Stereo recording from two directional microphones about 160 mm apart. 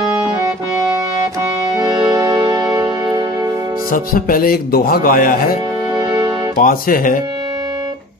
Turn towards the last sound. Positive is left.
turn(degrees=60)  # may be behind; listen again after turning